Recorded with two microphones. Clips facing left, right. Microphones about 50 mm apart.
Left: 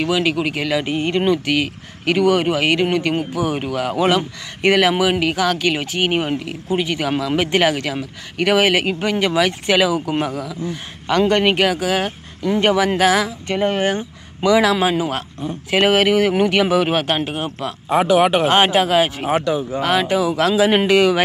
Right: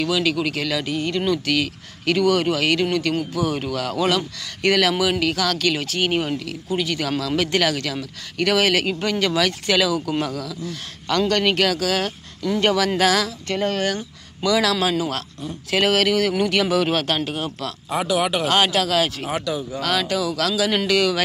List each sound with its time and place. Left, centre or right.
0.0 s speech: left